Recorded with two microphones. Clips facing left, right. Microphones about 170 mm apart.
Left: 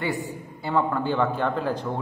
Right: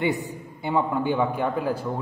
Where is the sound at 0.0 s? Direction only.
20° right (ahead or behind).